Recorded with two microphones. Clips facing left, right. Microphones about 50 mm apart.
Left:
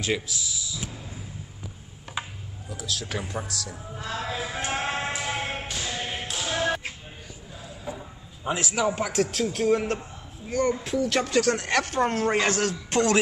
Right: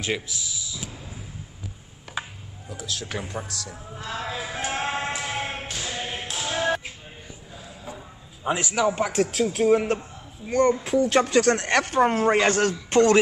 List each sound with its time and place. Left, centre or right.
0.3 s a sound: right
2.7 s a man's voice: centre
4.6 s tap: centre
8.5 s a man's voice: right
8.7 s a man's voice: centre
9.0 s a man's voice: centre
10.5 s a man's voice: centre
11.1 s speech: right
11.8 s a man's voice: right